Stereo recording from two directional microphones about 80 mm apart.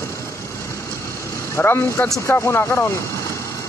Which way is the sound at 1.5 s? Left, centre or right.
Left.